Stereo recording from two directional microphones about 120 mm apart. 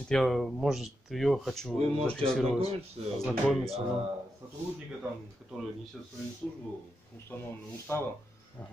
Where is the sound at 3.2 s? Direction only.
Centre (ahead or behind).